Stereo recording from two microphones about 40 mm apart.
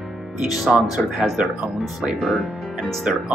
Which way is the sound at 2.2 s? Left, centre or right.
Centre.